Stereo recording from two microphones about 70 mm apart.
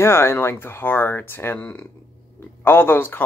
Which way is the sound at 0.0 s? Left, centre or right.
Left.